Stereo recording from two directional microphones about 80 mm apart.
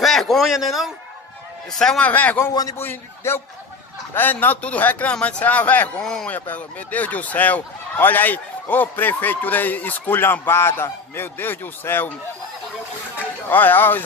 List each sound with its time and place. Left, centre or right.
0.0 s a man's voice: centre
1.8 s a man's voice: centre
2.0 s speech: centre
2.8 s a man's voice: left
6.0 s a man's voice: centre
6.3 s speech: centre
13.5 s speech: left